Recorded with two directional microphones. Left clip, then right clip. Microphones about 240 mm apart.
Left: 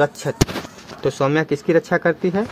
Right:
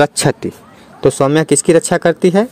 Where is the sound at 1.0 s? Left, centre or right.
Right.